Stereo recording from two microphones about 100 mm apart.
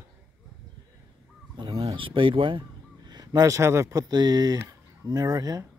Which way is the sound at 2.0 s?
60° right (ahead or behind).